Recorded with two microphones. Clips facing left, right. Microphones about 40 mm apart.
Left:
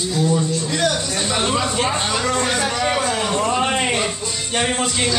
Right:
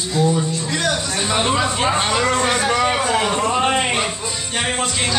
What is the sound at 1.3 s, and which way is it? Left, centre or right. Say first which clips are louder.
Speech: right 2 dB; centre.